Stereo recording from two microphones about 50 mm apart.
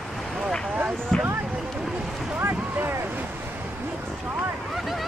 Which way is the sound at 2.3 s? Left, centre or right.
Right.